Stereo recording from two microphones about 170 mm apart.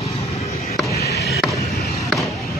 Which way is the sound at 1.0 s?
70° left (ahead or behind).